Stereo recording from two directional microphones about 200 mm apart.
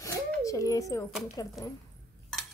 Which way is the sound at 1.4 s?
20° left (ahead or behind).